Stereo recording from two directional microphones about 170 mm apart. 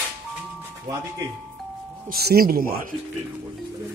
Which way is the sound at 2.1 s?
65° right (ahead or behind).